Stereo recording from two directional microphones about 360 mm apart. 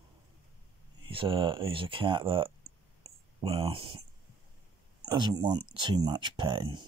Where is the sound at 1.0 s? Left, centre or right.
Centre.